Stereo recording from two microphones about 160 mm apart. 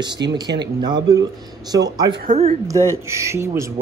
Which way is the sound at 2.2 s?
45° right (ahead or behind).